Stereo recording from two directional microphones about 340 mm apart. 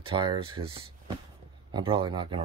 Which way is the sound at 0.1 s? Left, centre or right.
Centre.